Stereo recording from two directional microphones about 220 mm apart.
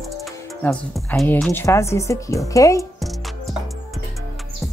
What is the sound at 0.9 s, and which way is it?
A woman's voice, 5° left (ahead or behind).